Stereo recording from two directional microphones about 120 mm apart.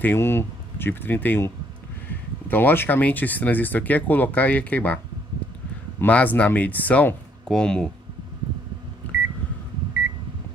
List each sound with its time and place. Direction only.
0.0 s speech: 20° left (ahead or behind)